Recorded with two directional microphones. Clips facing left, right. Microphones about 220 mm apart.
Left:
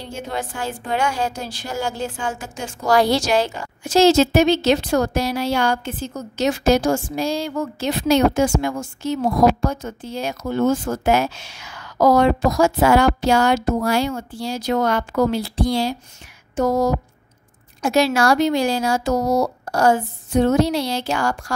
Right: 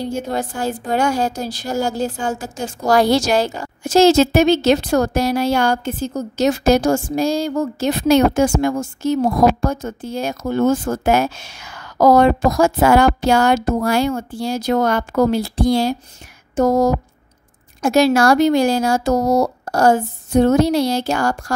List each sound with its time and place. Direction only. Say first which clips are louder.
0.0 s a woman's voice: right 6 dB; 40° right (ahead or behind)